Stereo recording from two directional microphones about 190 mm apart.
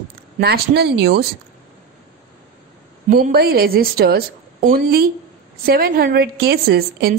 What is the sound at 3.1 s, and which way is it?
A woman's voice, 50° right (ahead or behind).